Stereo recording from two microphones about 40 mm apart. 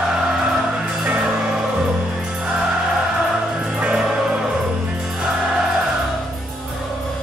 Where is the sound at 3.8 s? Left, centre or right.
Right.